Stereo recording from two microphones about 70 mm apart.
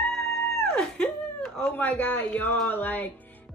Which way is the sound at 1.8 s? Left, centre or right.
Left.